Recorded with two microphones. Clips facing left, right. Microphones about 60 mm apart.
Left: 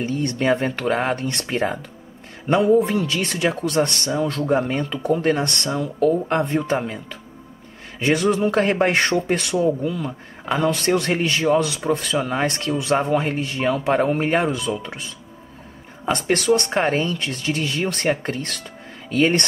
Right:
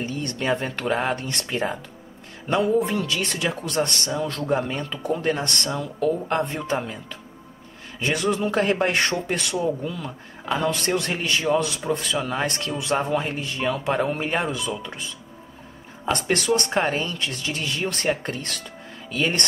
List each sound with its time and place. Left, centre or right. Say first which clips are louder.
0.0 s speech: left 5 dB; left
8.0 s speech: left 5 dB; left
9.7 s speech: left 5 dB; centre
10.9 s speech: left 4 dB; left
16.1 s speech: left 3 dB; left